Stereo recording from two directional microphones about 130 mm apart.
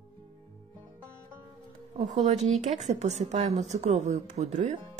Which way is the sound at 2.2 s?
65° right (ahead or behind).